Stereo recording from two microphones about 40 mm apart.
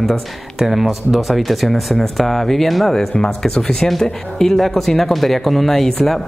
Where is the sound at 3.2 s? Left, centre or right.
Centre.